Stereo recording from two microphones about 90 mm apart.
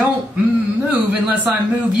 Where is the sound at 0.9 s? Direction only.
15° right (ahead or behind).